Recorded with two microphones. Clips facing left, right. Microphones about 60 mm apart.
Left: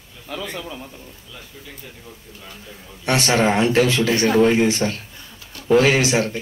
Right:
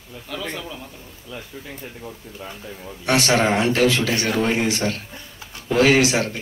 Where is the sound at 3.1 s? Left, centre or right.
Left.